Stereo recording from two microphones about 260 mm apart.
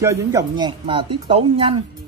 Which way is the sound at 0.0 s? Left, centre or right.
Centre.